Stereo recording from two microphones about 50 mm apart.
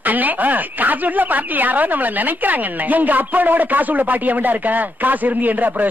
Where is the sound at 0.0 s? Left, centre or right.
Right.